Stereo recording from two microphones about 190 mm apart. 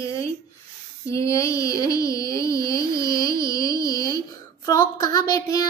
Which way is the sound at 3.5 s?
15° left (ahead or behind).